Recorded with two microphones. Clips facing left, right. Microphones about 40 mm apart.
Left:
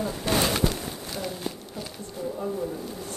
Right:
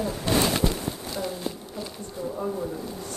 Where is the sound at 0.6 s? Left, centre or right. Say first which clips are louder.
Right 1 dB; centre.